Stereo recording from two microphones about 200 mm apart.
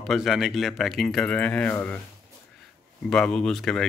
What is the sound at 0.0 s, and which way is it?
Speech, centre (ahead or behind).